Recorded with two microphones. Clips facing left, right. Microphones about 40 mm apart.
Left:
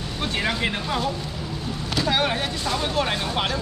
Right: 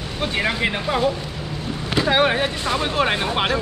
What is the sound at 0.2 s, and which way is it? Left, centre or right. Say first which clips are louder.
Speech: right 3 dB; centre.